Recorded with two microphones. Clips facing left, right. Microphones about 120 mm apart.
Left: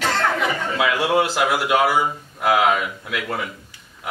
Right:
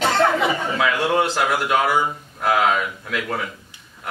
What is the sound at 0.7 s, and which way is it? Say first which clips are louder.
A man's voice: left 3 dB; 5° left (ahead or behind).